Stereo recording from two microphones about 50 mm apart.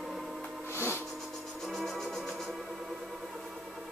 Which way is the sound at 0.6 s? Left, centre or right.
Left.